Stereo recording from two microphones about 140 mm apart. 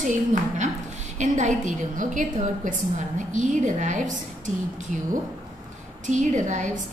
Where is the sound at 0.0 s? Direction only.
65° right (ahead or behind).